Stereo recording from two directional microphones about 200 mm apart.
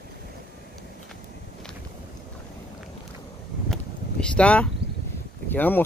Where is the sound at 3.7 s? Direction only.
5° left (ahead or behind).